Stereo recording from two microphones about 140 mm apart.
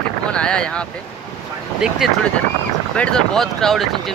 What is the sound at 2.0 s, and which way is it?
Speech, centre (ahead or behind).